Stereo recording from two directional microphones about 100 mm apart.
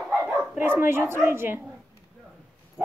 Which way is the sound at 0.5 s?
20° right (ahead or behind).